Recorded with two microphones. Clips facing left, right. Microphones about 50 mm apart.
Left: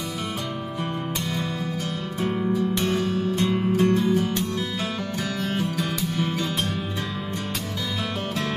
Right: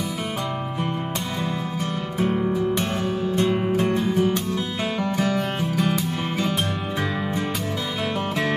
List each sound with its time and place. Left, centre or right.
2.8 s music: right